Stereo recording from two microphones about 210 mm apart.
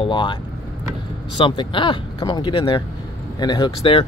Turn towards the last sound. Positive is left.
turn(degrees=25)  # may be behind; listen again after turning